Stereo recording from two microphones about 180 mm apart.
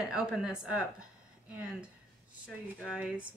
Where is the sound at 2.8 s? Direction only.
5° right (ahead or behind).